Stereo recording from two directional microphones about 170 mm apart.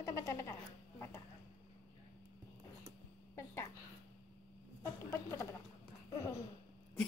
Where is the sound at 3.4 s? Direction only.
15° left (ahead or behind).